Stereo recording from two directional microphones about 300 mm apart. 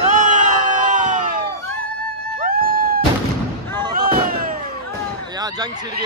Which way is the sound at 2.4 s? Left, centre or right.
Right.